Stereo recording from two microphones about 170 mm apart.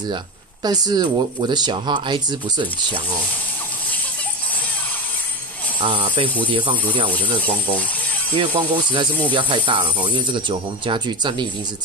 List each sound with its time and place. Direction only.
0.7 s speech: 25° right (ahead or behind)
5.8 s speech: 30° right (ahead or behind)
7.1 s speech: 10° left (ahead or behind)
8.4 s speech: 30° right (ahead or behind)